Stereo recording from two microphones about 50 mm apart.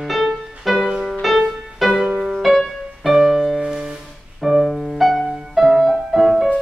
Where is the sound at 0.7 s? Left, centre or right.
Centre.